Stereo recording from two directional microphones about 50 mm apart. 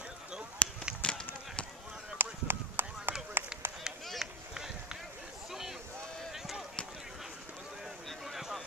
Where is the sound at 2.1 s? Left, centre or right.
Right.